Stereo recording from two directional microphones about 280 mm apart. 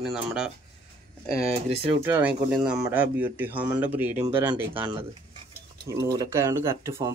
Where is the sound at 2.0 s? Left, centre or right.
Centre.